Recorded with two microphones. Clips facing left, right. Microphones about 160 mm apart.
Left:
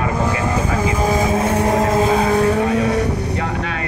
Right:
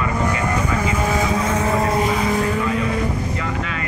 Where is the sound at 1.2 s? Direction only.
55° left (ahead or behind); by 3.1 s 75° left (ahead or behind).